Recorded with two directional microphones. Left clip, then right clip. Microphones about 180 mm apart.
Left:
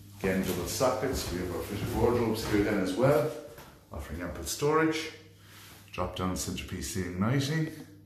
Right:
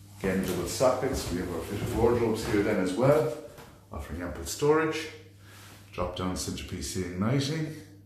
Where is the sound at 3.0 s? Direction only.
10° right (ahead or behind).